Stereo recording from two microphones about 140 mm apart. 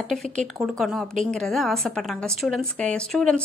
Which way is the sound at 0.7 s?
Centre (ahead or behind).